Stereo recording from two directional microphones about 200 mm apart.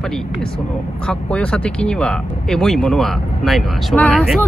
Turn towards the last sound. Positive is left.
turn(degrees=5)  # may be behind; listen again after turning